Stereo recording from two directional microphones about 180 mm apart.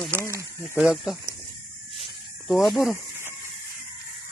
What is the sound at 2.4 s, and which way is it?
Speech, centre (ahead or behind).